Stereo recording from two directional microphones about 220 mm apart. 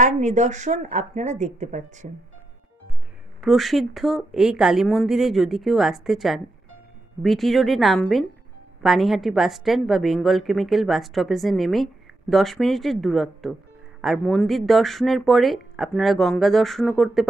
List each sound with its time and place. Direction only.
0.0 s speech: 35° right (ahead or behind)
3.3 s a woman's voice: centre (ahead or behind)